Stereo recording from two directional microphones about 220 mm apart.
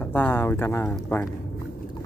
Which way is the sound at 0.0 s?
10° left (ahead or behind).